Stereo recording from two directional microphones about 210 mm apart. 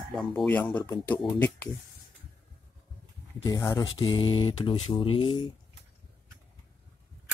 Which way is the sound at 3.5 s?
15° left (ahead or behind).